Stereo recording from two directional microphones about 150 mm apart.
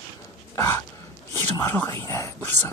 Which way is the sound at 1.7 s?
15° left (ahead or behind).